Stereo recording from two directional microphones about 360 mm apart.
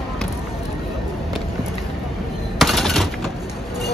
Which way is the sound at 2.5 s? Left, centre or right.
Centre.